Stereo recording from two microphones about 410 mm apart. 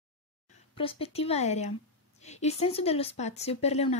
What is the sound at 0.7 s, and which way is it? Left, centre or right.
A woman's voice, centre.